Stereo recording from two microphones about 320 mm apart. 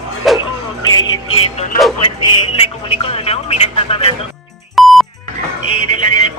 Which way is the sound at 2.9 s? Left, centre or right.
Centre.